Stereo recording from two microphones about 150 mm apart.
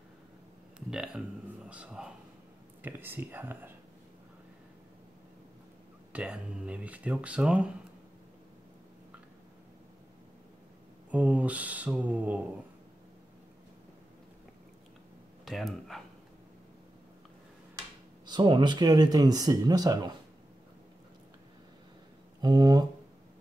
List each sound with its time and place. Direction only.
0.7 s a sound: 5° right (ahead or behind)
1.7 s speech: 5° right (ahead or behind)
6.1 s speech: 5° right (ahead or behind)
11.1 s speech: 10° right (ahead or behind)
15.4 s speech: centre (ahead or behind)
18.2 s speech: 30° right (ahead or behind)
22.4 s speech: 30° right (ahead or behind)